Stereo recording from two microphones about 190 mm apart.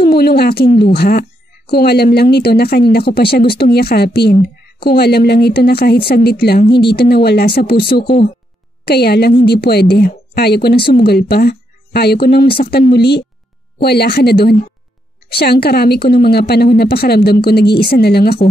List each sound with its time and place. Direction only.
0.1 s a woman's voice: 55° left (ahead or behind)
6.6 s speech: 25° left (ahead or behind)
6.9 s a woman's voice: 55° left (ahead or behind)
8.8 s a woman's voice: 55° left (ahead or behind)